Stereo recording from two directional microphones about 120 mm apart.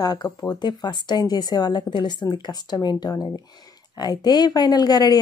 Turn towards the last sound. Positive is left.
turn(degrees=35)  # may be behind; listen again after turning